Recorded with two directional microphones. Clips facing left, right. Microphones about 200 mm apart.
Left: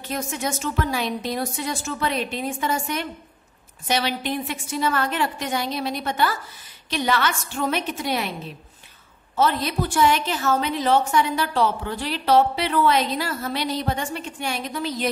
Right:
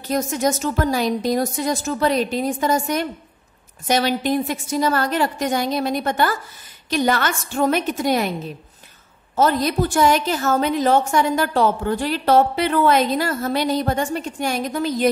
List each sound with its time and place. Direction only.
0.0 s a woman's voice: 40° right (ahead or behind)
9.3 s a woman's voice: 45° right (ahead or behind)